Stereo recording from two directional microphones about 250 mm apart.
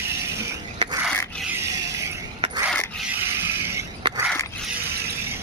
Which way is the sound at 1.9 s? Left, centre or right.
Centre.